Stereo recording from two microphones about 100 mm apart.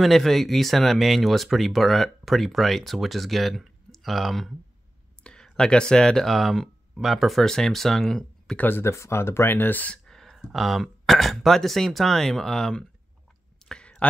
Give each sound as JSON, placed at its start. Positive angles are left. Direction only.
{"t": 0.0, "sound": "speech", "side_deg": 0}
{"t": 8.6, "sound": "speech", "side_deg": 25}
{"t": 10.0, "sound": "speech", "side_deg": 5}
{"t": 13.7, "sound": "a sound", "side_deg": 10}